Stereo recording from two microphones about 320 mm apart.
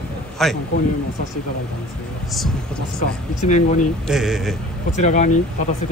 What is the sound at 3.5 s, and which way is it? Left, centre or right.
Speech, left.